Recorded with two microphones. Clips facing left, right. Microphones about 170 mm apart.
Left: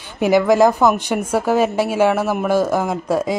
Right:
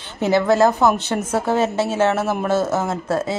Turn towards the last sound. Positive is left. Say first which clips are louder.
# left 2 dB
turn(degrees=15)  # may be behind; listen again after turning